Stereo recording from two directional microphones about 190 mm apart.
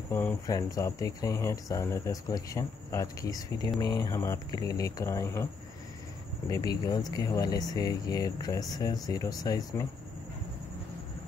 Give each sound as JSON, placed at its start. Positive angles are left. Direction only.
{"t": 0.1, "sound": "speech", "side_deg": 10}
{"t": 6.5, "sound": "speech", "side_deg": 20}